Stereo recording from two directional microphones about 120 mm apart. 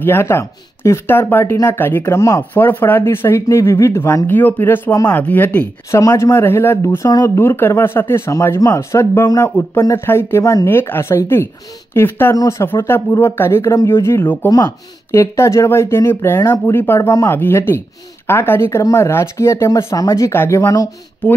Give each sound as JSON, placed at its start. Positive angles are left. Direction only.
{"t": 0.0, "sound": "speech", "side_deg": 20}
{"t": 5.9, "sound": "speech", "side_deg": 25}
{"t": 7.1, "sound": "speech", "side_deg": 30}
{"t": 7.3, "sound": "speech", "side_deg": 20}
{"t": 17.1, "sound": "speech", "side_deg": 30}
{"t": 17.4, "sound": "speech", "side_deg": 20}